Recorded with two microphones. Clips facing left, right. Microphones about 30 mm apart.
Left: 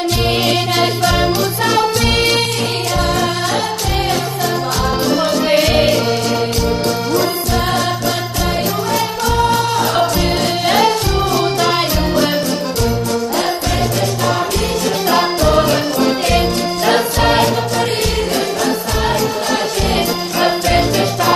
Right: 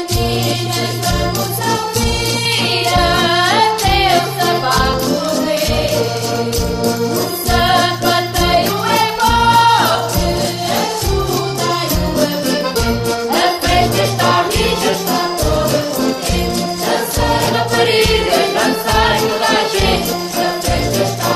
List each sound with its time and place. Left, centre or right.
2.9 s music: right
5.2 s music: left
7.5 s music: right
13.4 s music: right
15.7 s music: left
17.7 s music: right
20.3 s music: left